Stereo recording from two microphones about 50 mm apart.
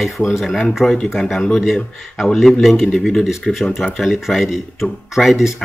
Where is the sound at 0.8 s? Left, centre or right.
Centre.